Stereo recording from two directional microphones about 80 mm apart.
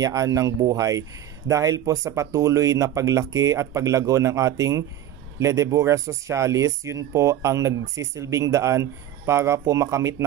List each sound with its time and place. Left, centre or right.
0.0 s speech: right